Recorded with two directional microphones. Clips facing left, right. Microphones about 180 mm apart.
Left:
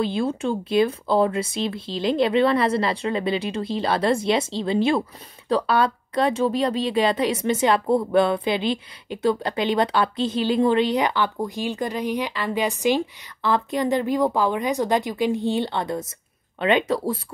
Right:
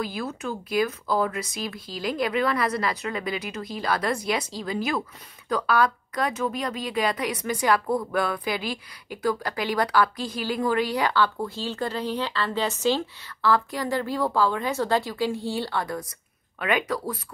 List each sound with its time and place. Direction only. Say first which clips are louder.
0.0 s speech: left 7 dB; 30° left (ahead or behind)